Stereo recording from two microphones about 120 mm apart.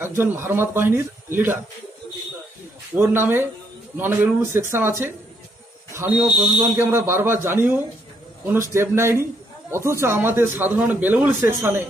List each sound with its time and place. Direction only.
0.0 s a man's voice: 20° right (ahead or behind)
3.0 s a man's voice: 20° right (ahead or behind)
6.8 s a man's voice: 20° right (ahead or behind)